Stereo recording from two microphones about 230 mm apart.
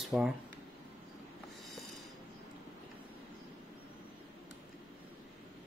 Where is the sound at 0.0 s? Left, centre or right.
Centre.